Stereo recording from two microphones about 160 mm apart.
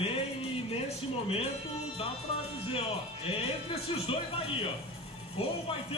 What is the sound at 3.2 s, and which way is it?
Speech, 40° left (ahead or behind).